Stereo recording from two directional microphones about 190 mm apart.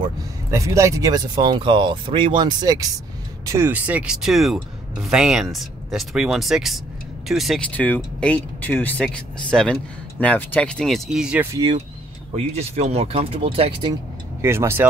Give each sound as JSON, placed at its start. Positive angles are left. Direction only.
{"t": 0.5, "sound": "speech", "side_deg": -15}
{"t": 12.5, "sound": "speech", "side_deg": -35}
{"t": 14.4, "sound": "speech", "side_deg": -15}